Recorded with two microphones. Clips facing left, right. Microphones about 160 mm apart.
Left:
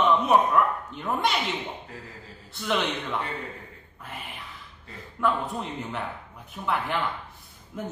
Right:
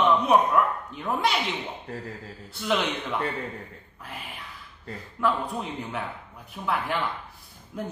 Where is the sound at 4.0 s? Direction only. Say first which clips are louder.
Even; centre (ahead or behind).